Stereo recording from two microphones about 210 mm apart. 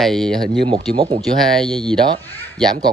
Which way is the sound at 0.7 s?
30° right (ahead or behind).